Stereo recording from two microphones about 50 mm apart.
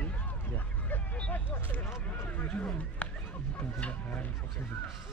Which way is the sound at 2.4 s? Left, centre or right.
Left.